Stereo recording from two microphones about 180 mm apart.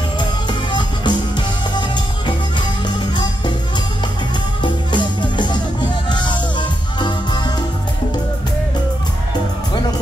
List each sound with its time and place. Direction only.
0.2 s music: 25° left (ahead or behind)
4.9 s music: 25° left (ahead or behind)